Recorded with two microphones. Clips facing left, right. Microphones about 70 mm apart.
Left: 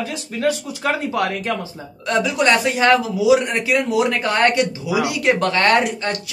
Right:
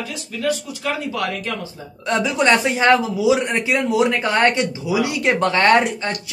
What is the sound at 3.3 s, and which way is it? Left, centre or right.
Speech, centre.